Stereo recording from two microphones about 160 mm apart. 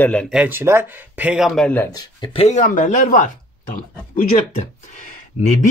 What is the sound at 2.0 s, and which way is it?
Speech, 35° left (ahead or behind).